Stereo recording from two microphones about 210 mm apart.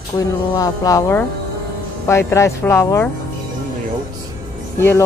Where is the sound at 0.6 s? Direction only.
15° left (ahead or behind).